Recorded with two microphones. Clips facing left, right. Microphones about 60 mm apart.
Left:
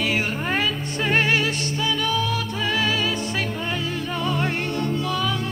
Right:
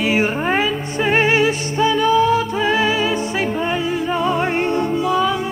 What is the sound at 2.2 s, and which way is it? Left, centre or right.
Music, right.